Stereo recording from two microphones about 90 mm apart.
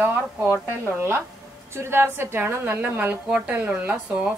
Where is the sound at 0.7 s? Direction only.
25° right (ahead or behind).